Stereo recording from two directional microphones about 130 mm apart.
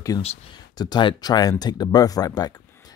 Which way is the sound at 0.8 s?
35° left (ahead or behind).